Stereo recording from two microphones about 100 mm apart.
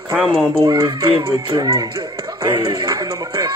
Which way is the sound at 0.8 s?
60° right (ahead or behind).